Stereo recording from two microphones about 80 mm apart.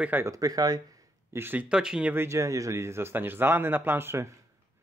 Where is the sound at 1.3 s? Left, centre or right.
Right.